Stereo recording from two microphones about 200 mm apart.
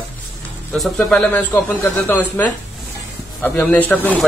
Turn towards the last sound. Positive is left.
turn(degrees=10)  # may be behind; listen again after turning